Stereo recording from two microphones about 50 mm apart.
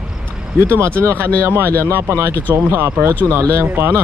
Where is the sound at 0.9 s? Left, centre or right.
Right.